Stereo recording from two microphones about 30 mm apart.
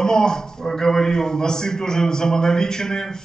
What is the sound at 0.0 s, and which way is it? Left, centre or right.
Speech, left.